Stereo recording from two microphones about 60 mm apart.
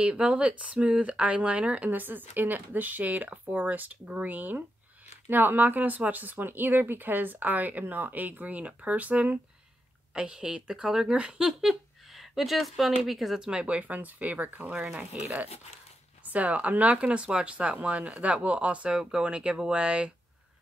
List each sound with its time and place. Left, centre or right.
0.0 s speech: centre
10.1 s speech: centre
11.6 s speech: centre
13.4 s speech: centre